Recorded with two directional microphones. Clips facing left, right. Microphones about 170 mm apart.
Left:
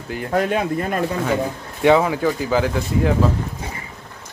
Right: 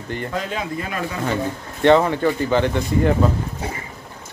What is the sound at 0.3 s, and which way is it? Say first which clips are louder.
Speech: left 10 dB; 55° left (ahead or behind).